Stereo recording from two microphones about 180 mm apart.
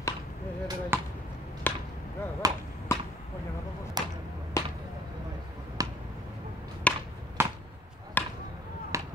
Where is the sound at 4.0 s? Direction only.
20° right (ahead or behind).